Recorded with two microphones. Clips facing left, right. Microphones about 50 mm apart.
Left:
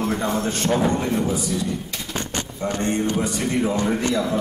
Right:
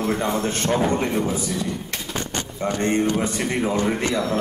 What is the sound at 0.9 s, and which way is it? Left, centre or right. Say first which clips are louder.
Speech: even; right.